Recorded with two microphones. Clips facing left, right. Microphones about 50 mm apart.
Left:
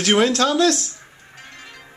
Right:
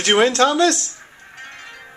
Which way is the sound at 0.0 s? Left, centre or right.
Centre.